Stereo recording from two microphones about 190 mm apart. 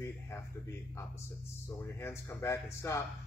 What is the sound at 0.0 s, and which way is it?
A man's voice, 15° left (ahead or behind).